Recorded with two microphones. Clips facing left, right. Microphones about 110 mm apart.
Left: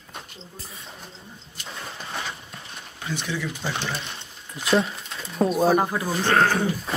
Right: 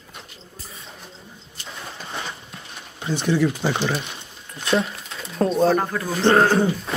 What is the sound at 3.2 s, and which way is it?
Speech, 45° right (ahead or behind).